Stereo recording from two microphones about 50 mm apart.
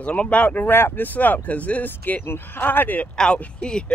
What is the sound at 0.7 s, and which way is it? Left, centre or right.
Speech, left.